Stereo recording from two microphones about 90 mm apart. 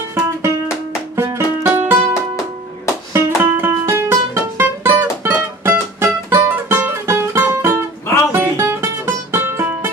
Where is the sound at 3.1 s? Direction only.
25° right (ahead or behind).